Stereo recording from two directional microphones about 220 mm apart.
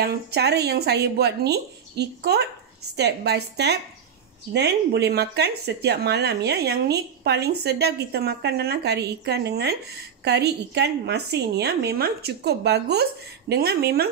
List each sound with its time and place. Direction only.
0.0 s speech: 45° right (ahead or behind)